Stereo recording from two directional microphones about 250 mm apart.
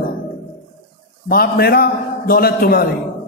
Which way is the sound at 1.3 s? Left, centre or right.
Left.